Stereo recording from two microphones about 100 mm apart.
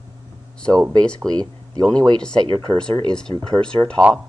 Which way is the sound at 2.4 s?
60° right (ahead or behind).